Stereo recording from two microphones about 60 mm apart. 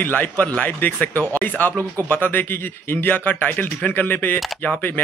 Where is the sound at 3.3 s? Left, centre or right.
Left.